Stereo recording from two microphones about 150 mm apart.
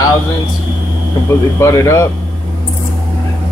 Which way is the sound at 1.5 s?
20° left (ahead or behind).